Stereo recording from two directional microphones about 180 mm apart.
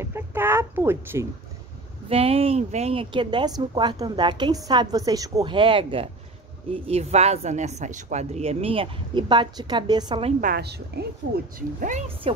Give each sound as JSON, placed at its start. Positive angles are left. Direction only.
{"t": 0.0, "sound": "a child's voice", "side_deg": -15}
{"t": 2.0, "sound": "a woman's voice", "side_deg": -35}
{"t": 10.4, "sound": "a woman's voice", "side_deg": -60}
{"t": 12.2, "sound": "speech", "side_deg": -30}